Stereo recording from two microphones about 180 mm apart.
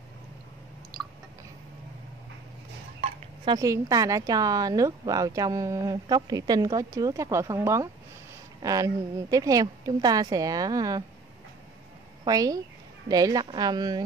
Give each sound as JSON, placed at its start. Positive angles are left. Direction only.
{"t": 3.0, "sound": "speech", "side_deg": -25}
{"t": 12.3, "sound": "speech", "side_deg": -20}